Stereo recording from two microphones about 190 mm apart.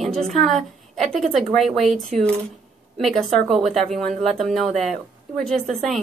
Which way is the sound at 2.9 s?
Centre (ahead or behind).